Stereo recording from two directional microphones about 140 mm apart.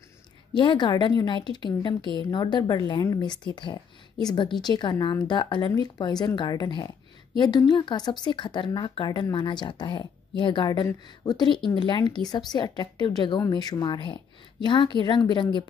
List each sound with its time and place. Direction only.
0.6 s speech: 35° left (ahead or behind)